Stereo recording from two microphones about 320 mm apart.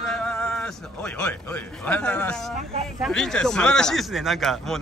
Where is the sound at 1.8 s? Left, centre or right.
Centre.